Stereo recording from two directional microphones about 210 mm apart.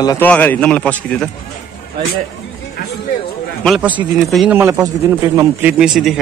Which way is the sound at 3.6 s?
5° right (ahead or behind).